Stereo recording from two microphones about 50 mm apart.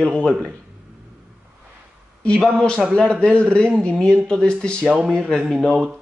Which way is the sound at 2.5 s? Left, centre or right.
Centre.